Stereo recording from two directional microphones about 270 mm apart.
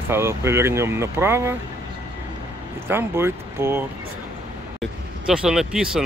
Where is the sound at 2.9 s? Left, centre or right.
Centre.